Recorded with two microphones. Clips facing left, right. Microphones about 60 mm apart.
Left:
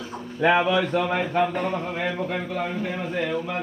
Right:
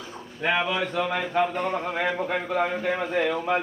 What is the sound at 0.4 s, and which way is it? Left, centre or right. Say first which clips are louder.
Speech: left 5 dB; left.